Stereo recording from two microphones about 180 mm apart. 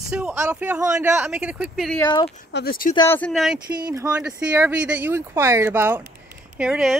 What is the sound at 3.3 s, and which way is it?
Speech, centre (ahead or behind).